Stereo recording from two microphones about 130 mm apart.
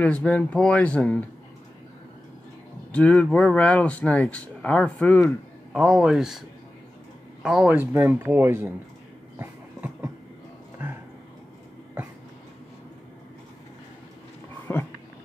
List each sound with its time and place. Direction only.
0.0 s speech: 10° left (ahead or behind)
2.9 s speech: 10° left (ahead or behind)
5.7 s a man's voice: centre (ahead or behind)
7.4 s a man's voice: 5° right (ahead or behind)
7.8 s speech: 15° right (ahead or behind)
9.4 s train: 15° right (ahead or behind)
14.7 s a sound: 15° left (ahead or behind)